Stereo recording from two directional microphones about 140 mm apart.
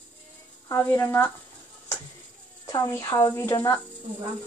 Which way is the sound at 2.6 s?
25° left (ahead or behind).